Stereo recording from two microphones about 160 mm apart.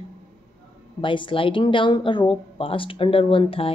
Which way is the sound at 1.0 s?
30° left (ahead or behind).